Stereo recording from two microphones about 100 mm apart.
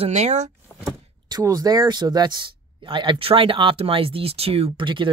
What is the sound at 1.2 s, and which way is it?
Speech, 40° right (ahead or behind).